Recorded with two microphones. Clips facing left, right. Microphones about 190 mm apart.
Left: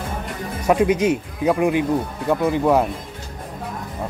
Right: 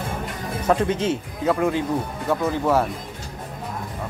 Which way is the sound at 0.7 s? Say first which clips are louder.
Left 4 dB; 10° left (ahead or behind).